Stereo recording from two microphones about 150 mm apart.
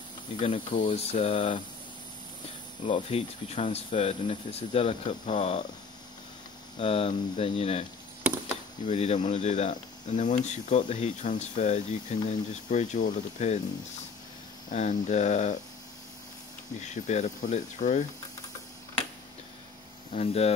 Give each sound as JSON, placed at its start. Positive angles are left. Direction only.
{"t": 0.4, "sound": "speech", "side_deg": 45}
{"t": 2.9, "sound": "speech", "side_deg": 45}
{"t": 6.8, "sound": "speech", "side_deg": 40}
{"t": 8.8, "sound": "speech", "side_deg": 45}
{"t": 14.7, "sound": "speech", "side_deg": 55}
{"t": 16.8, "sound": "speech", "side_deg": 50}
{"t": 20.1, "sound": "speech", "side_deg": 45}